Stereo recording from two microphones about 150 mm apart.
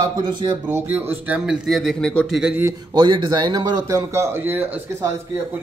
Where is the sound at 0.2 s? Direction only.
30° right (ahead or behind).